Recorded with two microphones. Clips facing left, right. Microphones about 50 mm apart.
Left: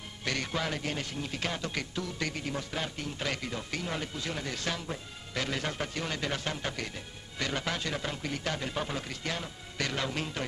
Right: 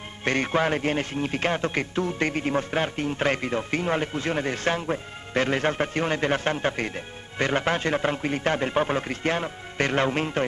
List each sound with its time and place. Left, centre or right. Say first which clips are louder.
0.2 s a man's voice: right 10 dB; right